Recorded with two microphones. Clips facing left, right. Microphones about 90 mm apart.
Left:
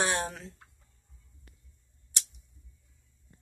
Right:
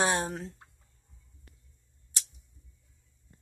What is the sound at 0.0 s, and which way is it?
Chicken, 25° right (ahead or behind).